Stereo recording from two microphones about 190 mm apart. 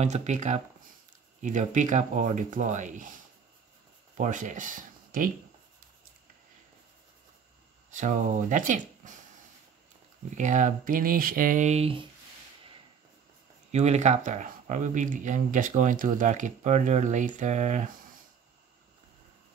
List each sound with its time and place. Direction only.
0.0 s speech: 35° right (ahead or behind)
4.2 s speech: 40° right (ahead or behind)
7.9 s speech: 40° right (ahead or behind)
10.3 s speech: 40° right (ahead or behind)
13.7 s speech: 35° right (ahead or behind)